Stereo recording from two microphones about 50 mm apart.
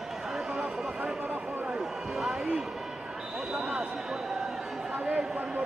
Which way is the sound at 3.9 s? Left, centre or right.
Centre.